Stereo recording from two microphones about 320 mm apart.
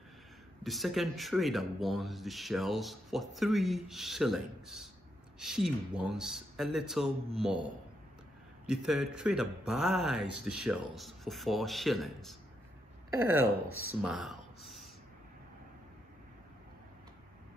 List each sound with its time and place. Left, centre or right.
0.7 s speech: centre
8.6 s speech: centre
13.7 s speech: right
14.0 s speech: centre